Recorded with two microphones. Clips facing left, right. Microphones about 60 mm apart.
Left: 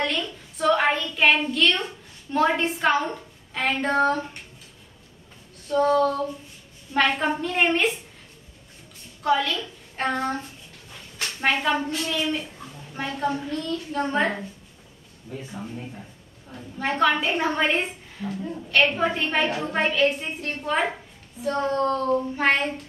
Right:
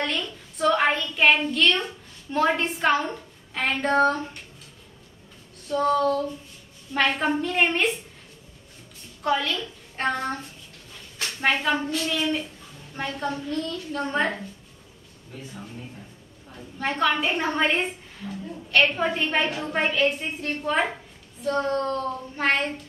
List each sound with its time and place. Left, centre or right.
0.0 s a child's voice: centre
5.7 s a woman's voice: centre
9.2 s a woman's voice: centre
11.4 s a woman's voice: centre
16.7 s a woman's voice: centre